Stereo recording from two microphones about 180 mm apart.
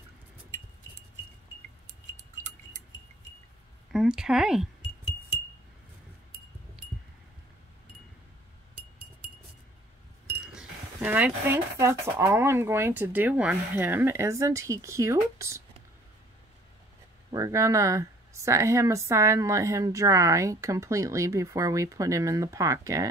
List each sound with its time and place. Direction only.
3.9 s speech: 5° right (ahead or behind)
10.4 s speech: 5° right (ahead or behind)
17.3 s speech: 15° right (ahead or behind)